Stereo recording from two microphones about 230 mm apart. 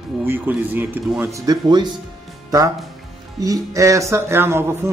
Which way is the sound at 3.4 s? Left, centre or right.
Centre.